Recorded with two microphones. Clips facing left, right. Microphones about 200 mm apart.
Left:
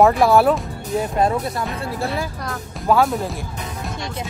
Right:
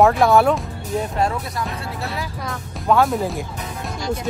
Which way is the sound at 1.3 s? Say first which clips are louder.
Left 4 dB; 30° left (ahead or behind).